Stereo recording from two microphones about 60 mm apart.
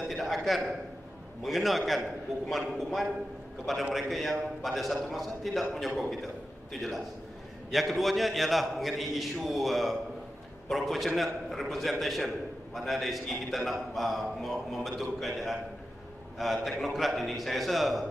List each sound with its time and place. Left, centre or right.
0.1 s a man's voice: centre
3.9 s a man's voice: centre